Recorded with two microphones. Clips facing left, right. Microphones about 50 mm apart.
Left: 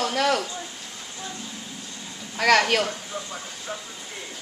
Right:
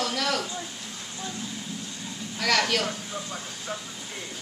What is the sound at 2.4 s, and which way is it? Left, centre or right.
Speech, left.